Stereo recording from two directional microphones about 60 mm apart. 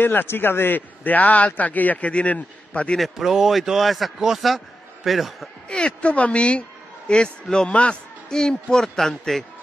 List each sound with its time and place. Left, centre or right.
0.0 s a man's voice: left
3.0 s a man's voice: centre
5.7 s a man's voice: centre